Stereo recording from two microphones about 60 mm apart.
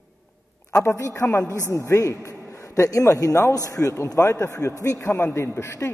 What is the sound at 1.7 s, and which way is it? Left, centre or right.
A man's voice, left.